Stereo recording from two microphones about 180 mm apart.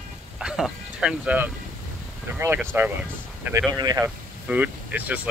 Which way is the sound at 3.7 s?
25° right (ahead or behind).